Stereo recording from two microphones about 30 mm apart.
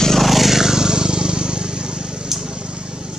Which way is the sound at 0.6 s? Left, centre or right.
Centre.